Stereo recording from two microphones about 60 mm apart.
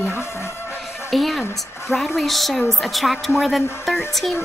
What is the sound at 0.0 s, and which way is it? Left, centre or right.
Music, left.